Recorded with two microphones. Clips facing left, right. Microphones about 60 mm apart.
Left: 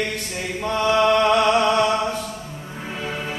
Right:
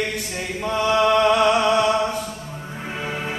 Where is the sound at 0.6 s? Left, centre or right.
Centre.